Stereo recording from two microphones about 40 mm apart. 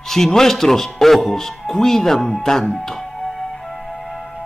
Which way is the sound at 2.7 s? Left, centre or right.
Centre.